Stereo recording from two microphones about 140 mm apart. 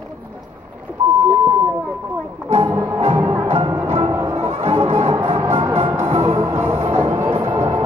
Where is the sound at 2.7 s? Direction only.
20° right (ahead or behind).